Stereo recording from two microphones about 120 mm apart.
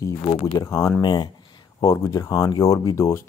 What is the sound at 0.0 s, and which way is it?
Speech, 25° left (ahead or behind).